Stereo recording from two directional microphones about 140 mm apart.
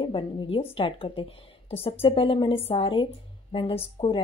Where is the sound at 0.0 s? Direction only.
40° left (ahead or behind).